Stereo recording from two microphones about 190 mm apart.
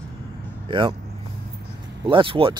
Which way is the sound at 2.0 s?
25° right (ahead or behind).